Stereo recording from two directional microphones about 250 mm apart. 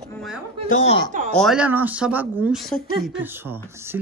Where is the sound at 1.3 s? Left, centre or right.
Centre.